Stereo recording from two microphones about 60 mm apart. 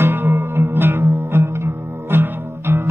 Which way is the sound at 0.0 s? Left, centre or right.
Right.